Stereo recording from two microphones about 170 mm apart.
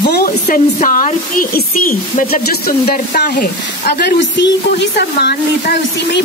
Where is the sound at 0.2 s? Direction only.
55° left (ahead or behind); by 5.8 s 75° left (ahead or behind).